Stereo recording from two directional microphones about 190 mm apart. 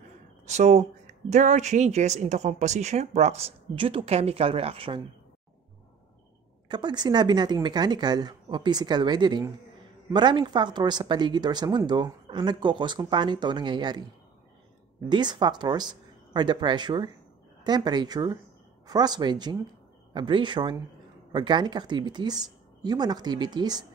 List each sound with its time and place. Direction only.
0.5 s speech: 35° right (ahead or behind)
6.7 s speech: 25° right (ahead or behind)
15.0 s speech: 25° right (ahead or behind)